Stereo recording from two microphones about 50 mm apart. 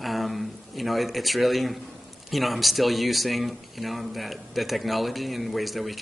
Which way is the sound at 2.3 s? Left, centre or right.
Centre.